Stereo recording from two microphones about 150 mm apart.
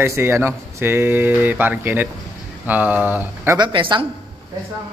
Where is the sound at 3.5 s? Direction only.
30° right (ahead or behind).